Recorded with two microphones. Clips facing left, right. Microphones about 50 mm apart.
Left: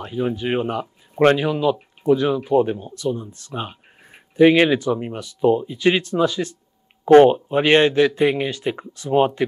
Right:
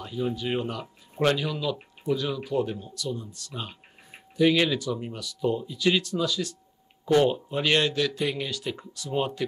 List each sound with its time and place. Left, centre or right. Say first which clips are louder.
0.0 s a man's voice: left 6 dB; left